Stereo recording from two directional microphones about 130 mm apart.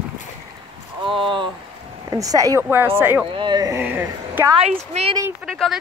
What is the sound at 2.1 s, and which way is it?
Speech, 25° right (ahead or behind).